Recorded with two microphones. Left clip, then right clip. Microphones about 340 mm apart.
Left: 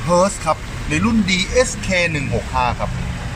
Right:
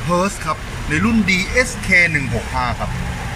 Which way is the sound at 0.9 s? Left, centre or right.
Centre.